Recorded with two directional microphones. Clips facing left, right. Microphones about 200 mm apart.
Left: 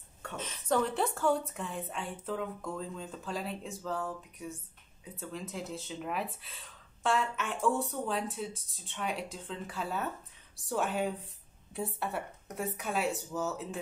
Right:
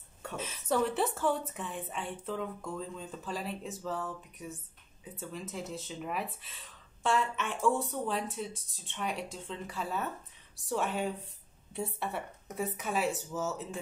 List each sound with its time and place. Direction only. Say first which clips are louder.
0.4 s speech: even; 5° right (ahead or behind)